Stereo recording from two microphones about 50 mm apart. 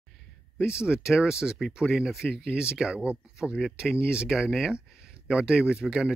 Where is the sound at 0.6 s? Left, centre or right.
Centre.